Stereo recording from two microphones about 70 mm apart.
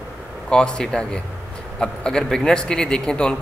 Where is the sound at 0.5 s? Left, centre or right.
Centre.